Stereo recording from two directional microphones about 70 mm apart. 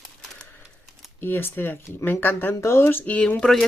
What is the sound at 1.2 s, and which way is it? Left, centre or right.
Speech, left.